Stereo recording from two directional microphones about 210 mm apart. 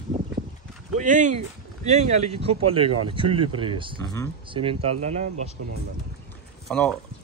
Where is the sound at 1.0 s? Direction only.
35° right (ahead or behind).